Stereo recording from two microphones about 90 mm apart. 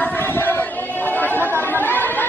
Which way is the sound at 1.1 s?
20° left (ahead or behind).